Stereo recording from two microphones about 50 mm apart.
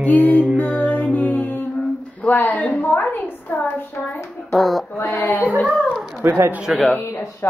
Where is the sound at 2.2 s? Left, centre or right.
Left.